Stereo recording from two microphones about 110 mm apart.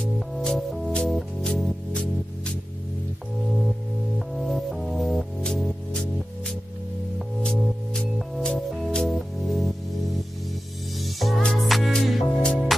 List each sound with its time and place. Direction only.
0.0 s music: 5° left (ahead or behind)
4.3 s music: centre (ahead or behind)
11.0 s music: centre (ahead or behind)